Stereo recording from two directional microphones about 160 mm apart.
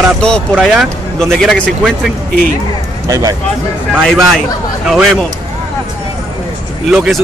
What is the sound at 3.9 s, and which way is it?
Speech, 5° left (ahead or behind).